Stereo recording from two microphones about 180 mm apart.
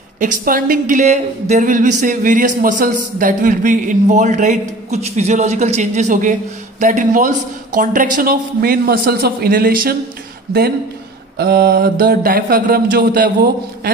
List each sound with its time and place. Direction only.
0.2 s speech: 50° right (ahead or behind)
11.3 s mantra: 60° right (ahead or behind)